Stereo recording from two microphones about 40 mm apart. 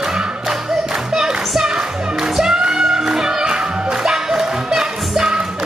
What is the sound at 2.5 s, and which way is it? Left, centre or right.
Music, centre.